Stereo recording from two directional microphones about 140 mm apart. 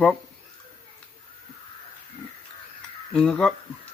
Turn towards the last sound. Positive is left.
turn(degrees=5)  # may be behind; listen again after turning